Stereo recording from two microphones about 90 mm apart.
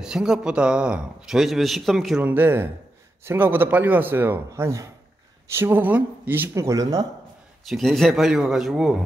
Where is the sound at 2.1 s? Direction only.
20° right (ahead or behind).